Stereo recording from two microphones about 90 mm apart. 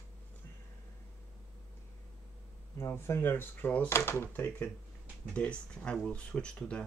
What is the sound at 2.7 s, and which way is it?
Speech, 30° left (ahead or behind).